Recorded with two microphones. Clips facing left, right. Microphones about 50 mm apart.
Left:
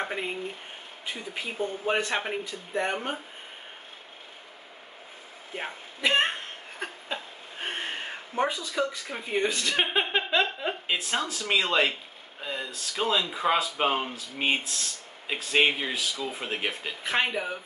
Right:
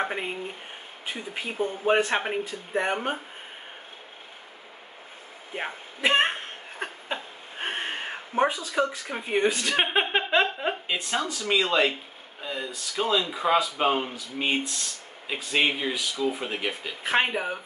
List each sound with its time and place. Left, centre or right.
0.0 s speech: centre
5.5 s speech: right
6.8 s a sound: centre
8.5 s speech: right
10.9 s speech: centre
15.2 s speech: centre
17.0 s speech: centre